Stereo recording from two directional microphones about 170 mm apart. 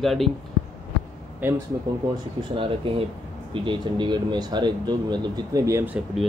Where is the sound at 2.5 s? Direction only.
30° right (ahead or behind).